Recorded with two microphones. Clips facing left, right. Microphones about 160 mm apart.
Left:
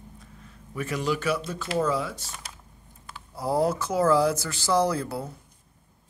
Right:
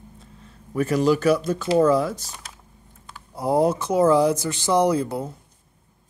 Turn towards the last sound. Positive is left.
turn(degrees=-20)  # may be behind; listen again after turning